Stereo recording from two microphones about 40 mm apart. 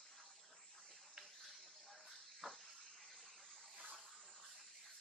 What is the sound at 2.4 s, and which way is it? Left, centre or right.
Water, centre.